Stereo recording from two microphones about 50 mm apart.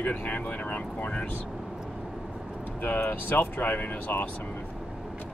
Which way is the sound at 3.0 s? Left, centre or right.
Left.